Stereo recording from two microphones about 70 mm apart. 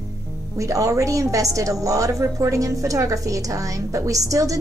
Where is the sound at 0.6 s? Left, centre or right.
Right.